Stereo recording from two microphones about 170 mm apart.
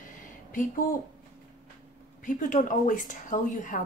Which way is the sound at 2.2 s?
50° left (ahead or behind).